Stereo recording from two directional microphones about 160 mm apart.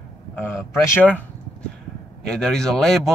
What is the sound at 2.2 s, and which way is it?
Speech, 5° left (ahead or behind).